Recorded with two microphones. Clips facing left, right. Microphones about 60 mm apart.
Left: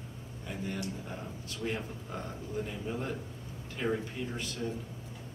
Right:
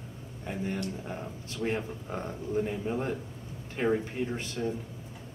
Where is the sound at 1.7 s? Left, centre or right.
Right.